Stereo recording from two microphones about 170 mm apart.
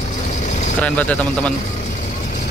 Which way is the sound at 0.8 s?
5° left (ahead or behind).